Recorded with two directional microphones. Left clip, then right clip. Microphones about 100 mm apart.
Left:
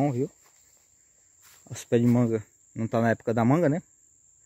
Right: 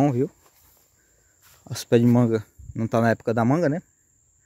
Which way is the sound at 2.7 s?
25° right (ahead or behind).